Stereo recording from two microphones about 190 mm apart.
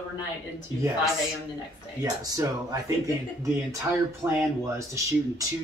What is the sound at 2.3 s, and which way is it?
Speech, 20° right (ahead or behind).